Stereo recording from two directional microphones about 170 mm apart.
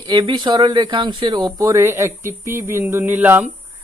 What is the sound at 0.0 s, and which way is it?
Speech, 25° right (ahead or behind).